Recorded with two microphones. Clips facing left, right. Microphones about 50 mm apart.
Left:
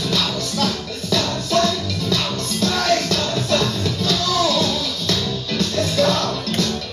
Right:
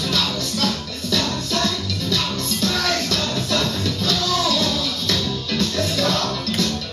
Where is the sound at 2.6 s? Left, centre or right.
Left.